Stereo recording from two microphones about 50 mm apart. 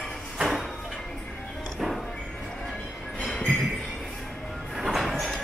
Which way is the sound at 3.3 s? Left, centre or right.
Centre.